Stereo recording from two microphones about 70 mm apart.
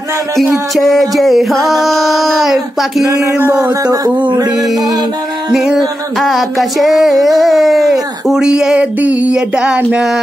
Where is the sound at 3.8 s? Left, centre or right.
Right.